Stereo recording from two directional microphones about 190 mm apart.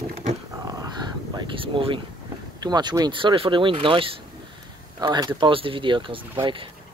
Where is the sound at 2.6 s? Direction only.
20° right (ahead or behind).